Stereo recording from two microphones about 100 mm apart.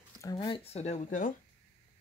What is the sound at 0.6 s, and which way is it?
Speech, 90° left.